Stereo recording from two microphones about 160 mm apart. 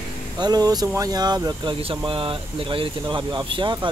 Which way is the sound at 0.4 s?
25° right (ahead or behind).